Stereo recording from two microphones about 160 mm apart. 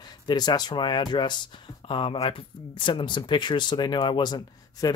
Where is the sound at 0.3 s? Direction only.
25° left (ahead or behind).